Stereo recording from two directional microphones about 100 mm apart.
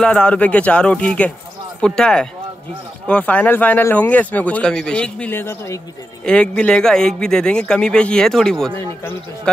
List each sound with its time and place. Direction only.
0.0 s a man's voice: 10° left (ahead or behind)
5.3 s a man's voice: 25° left (ahead or behind)
6.2 s a man's voice: 10° left (ahead or behind)